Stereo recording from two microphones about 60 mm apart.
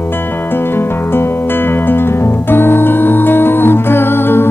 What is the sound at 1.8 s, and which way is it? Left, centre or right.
Music, left.